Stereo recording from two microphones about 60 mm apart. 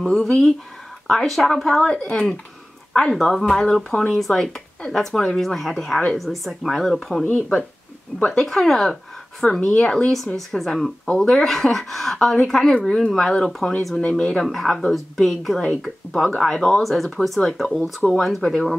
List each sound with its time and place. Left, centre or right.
0.0 s speech: centre
2.0 s speech: centre
4.4 s speech: centre
7.2 s speech: left
8.4 s speech: centre
9.6 s speech: centre
10.1 s speech: centre
14.4 s speech: centre